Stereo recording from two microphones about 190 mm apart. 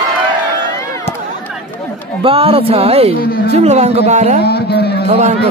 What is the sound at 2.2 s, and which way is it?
Speech, 30° right (ahead or behind).